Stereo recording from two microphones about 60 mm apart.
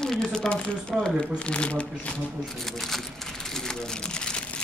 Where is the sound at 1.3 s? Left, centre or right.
Centre.